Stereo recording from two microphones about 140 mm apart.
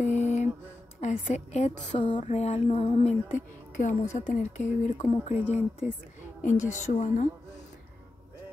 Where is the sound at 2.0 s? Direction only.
35° left (ahead or behind).